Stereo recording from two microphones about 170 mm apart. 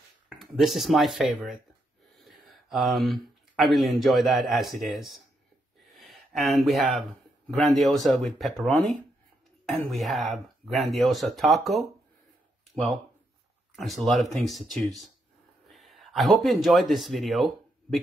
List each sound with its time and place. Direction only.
0.4 s speech: centre (ahead or behind)
4.7 s speech: 60° right (ahead or behind)
5.9 s a sound: centre (ahead or behind)
7.5 s speech: centre (ahead or behind)
9.7 s speech: centre (ahead or behind)
13.7 s speech: centre (ahead or behind)